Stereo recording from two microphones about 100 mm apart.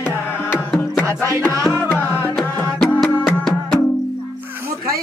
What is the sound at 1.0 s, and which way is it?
Music, 30° right (ahead or behind).